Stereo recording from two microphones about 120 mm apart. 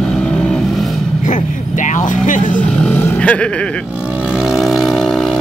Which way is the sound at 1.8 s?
90° left.